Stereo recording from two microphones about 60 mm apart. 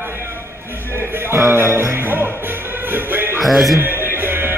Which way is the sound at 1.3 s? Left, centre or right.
Right.